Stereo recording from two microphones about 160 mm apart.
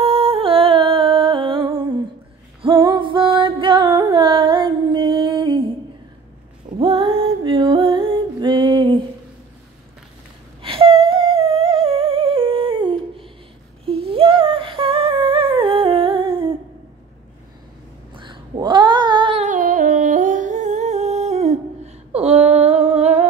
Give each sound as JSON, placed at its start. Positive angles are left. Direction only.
{"t": 0.0, "sound": "music", "side_deg": -35}
{"t": 6.8, "sound": "music", "side_deg": -30}
{"t": 10.6, "sound": "humming", "side_deg": -35}
{"t": 18.1, "sound": "cat", "side_deg": -30}
{"t": 19.4, "sound": "humming", "side_deg": -55}